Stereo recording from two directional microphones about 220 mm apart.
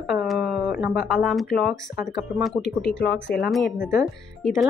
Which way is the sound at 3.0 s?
50° left (ahead or behind).